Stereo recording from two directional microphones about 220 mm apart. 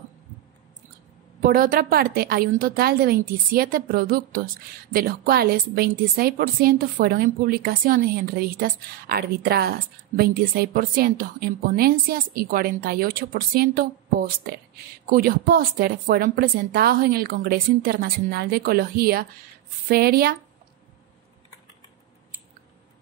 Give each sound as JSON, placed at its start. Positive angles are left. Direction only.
{"t": 1.4, "sound": "a woman's voice", "side_deg": -40}